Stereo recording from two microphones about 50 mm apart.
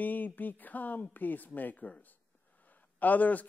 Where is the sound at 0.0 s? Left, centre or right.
Left.